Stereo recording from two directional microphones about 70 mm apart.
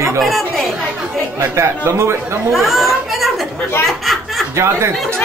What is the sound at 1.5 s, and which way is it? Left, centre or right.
Speech, right.